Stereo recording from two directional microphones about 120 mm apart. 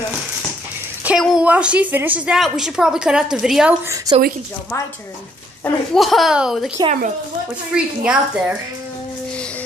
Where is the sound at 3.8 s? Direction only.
30° right (ahead or behind).